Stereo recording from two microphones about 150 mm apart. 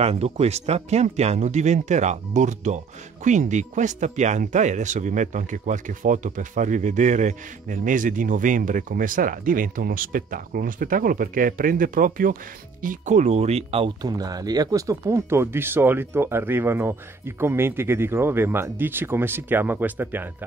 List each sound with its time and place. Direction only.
0.0 s speech: 45° right (ahead or behind); by 12.4 s 65° right (ahead or behind)
12.8 s speech: 50° right (ahead or behind)
14.0 s speech: 25° right (ahead or behind)